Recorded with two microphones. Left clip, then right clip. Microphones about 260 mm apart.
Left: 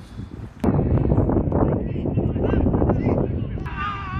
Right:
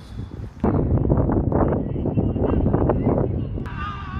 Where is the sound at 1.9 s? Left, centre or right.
Left.